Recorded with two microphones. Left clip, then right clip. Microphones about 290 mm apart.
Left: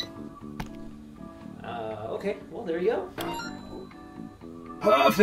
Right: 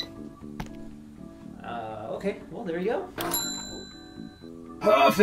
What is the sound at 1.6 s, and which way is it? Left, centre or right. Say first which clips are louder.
Speech: left 1 dB; centre.